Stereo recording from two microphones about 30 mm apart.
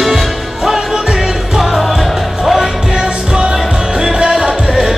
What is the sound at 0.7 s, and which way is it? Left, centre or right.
Music, right.